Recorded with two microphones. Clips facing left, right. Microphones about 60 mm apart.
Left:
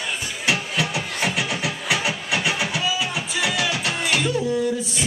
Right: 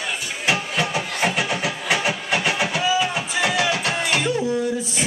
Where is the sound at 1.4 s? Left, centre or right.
Right.